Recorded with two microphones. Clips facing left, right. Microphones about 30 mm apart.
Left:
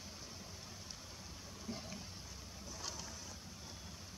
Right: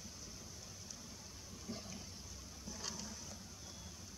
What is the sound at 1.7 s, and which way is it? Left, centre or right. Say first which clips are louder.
Vehicle: left 2 dB; centre.